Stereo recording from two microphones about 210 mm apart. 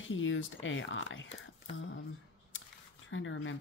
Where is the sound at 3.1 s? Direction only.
65° left (ahead or behind).